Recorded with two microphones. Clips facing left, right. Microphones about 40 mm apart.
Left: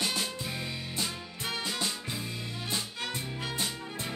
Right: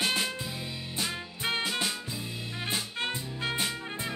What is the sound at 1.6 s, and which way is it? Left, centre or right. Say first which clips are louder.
Music: right 2 dB; centre.